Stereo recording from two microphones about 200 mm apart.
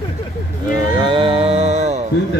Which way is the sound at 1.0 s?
25° right (ahead or behind).